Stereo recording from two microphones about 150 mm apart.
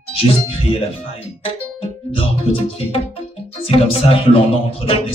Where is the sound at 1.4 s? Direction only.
35° left (ahead or behind).